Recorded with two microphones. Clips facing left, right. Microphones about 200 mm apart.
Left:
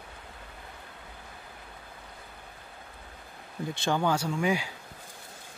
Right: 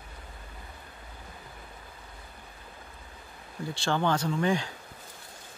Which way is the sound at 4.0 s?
10° left (ahead or behind).